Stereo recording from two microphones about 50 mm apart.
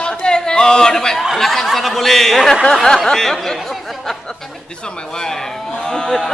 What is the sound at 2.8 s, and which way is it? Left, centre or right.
Speech, centre.